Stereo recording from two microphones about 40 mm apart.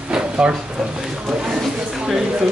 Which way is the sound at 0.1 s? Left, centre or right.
Right.